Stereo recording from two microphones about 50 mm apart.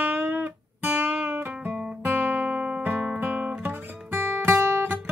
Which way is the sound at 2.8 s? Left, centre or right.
Right.